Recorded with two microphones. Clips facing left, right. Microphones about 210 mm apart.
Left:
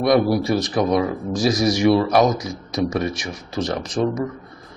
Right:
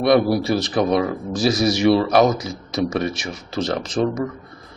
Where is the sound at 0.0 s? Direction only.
30° right (ahead or behind).